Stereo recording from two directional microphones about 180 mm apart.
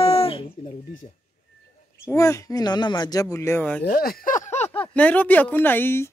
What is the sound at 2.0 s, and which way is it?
Speech, 15° left (ahead or behind).